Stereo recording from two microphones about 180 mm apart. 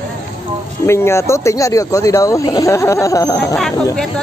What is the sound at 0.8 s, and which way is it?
Speech, 15° left (ahead or behind).